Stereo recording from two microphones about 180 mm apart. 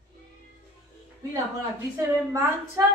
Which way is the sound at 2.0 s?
15° right (ahead or behind).